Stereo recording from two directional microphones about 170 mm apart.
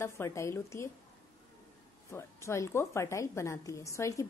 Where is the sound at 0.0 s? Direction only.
15° left (ahead or behind).